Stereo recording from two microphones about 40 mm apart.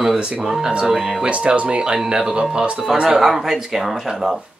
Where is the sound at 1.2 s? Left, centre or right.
Right.